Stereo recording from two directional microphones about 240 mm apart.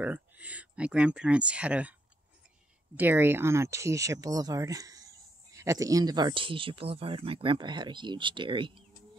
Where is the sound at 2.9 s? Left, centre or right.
Centre.